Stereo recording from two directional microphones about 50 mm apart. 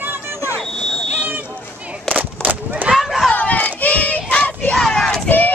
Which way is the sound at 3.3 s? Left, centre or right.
Left.